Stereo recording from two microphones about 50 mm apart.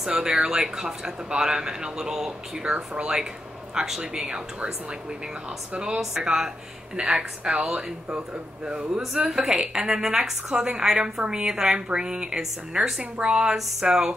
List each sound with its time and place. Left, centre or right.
0.2 s a woman's voice: centre
2.6 s a woman's voice: right
6.2 s a woman's voice: centre